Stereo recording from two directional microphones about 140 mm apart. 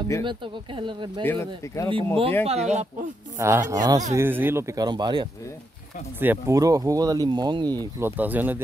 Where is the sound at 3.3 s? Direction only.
20° right (ahead or behind).